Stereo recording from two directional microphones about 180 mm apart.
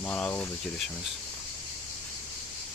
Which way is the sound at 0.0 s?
10° left (ahead or behind).